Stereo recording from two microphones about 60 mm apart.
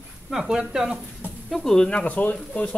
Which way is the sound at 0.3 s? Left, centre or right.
Centre.